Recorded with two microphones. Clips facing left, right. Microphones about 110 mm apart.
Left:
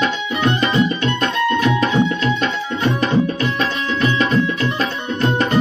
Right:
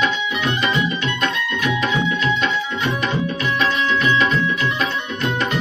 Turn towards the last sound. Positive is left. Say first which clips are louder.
# left 1 dB
turn(degrees=35)  # may be behind; listen again after turning